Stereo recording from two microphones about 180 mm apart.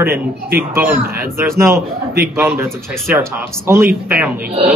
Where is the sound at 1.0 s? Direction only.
55° right (ahead or behind).